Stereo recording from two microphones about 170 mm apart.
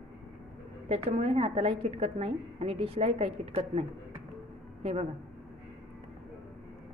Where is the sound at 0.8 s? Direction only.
35° right (ahead or behind).